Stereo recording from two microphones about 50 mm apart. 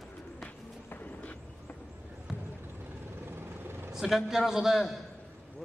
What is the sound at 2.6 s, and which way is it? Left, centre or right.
Vehicle, right.